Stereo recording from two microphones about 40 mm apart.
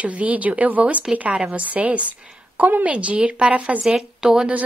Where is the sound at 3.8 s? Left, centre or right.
Centre.